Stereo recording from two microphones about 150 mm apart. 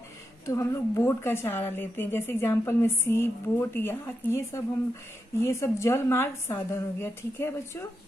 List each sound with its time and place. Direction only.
0.5 s a woman's voice: 20° left (ahead or behind)